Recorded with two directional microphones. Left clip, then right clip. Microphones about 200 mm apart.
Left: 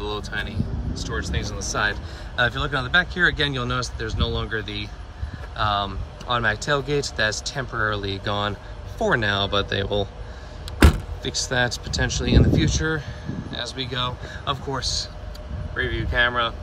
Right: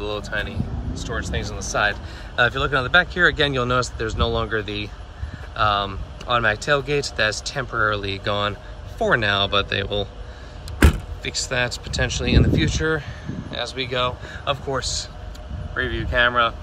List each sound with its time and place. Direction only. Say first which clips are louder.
0.0 s speech: right 2 dB; 10° left (ahead or behind)
11.2 s speech: even; 20° left (ahead or behind)